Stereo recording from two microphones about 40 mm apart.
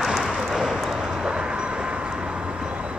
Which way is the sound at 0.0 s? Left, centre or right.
Centre.